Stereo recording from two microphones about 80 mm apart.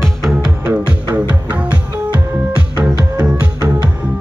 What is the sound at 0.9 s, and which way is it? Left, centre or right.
Music, centre.